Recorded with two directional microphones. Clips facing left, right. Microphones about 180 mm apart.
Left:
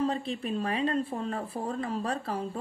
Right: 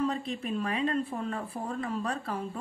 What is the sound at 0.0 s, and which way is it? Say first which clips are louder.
Speech: left 1 dB; 30° left (ahead or behind).